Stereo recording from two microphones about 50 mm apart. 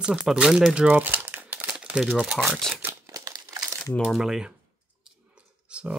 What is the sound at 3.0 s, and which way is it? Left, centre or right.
Crumpling, right.